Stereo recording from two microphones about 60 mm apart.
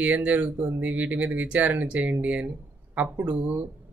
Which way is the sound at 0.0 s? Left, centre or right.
Right.